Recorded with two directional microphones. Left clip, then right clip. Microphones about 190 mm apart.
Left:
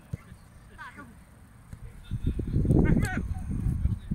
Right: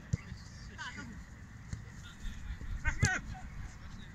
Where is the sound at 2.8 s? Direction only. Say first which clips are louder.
Left 1 dB; 15° left (ahead or behind).